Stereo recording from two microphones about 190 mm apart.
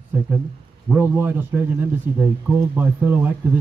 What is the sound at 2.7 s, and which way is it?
Speech, 10° right (ahead or behind).